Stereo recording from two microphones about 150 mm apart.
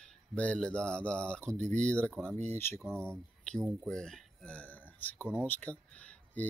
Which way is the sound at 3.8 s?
5° left (ahead or behind).